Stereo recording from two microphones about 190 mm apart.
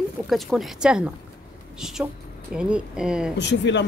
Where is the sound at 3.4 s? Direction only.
65° left (ahead or behind).